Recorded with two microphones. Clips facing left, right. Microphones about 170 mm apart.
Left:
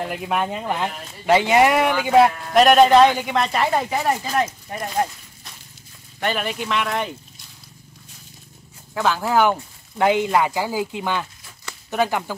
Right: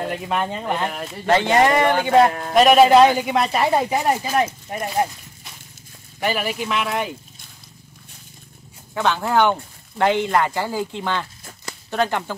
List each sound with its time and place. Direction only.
0.1 s speech: 5° left (ahead or behind)
8.9 s speech: centre (ahead or behind)